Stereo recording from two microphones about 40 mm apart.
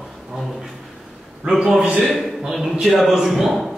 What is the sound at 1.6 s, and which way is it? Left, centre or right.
Speech, centre.